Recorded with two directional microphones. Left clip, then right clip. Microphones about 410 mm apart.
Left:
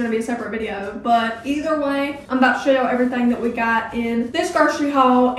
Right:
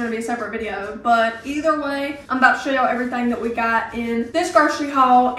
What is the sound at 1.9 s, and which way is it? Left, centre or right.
Speech, centre.